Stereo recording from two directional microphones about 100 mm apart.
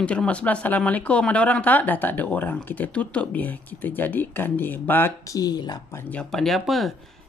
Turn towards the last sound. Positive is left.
turn(degrees=0)  # may be behind; listen again after turning